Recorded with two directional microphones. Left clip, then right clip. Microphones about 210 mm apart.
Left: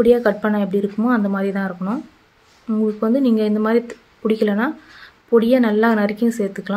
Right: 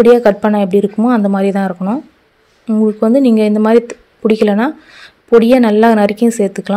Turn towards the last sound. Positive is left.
turn(degrees=-30)  # may be behind; listen again after turning